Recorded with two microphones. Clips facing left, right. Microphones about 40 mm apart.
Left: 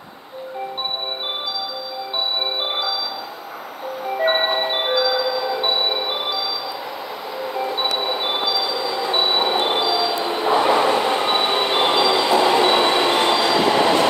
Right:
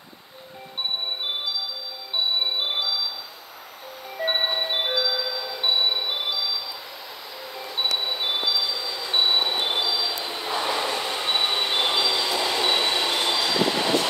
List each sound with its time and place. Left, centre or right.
2.6 s music: centre
4.2 s music: left
8.0 s train: centre
10.1 s train: left
13.7 s train: left